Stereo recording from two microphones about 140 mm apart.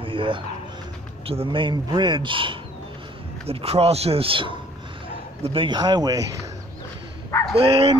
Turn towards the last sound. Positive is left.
turn(degrees=-45)  # may be behind; listen again after turning